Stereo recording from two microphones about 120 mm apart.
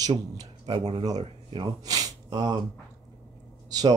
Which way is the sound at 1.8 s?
30° right (ahead or behind).